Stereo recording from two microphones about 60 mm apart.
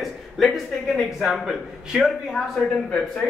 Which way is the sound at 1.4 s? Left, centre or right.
Centre.